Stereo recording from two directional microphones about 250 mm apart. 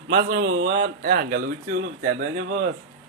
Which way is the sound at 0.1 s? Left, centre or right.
Right.